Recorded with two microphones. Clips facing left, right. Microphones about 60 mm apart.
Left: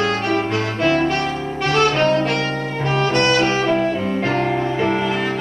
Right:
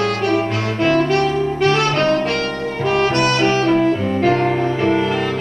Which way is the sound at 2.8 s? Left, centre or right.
Centre.